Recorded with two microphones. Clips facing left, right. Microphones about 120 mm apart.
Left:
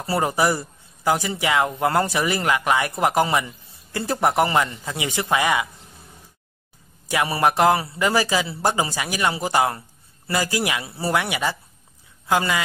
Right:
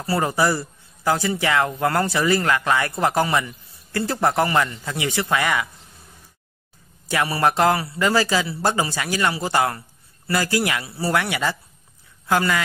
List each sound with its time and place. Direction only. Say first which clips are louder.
0.0 s speech: even; 20° left (ahead or behind)
7.1 s speech: even; 20° left (ahead or behind)